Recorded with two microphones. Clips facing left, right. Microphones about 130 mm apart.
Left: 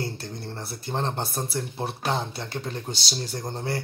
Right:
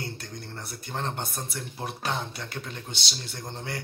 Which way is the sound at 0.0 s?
30° left (ahead or behind).